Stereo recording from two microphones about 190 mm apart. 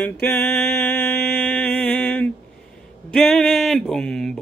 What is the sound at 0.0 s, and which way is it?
Mantra, 5° left (ahead or behind).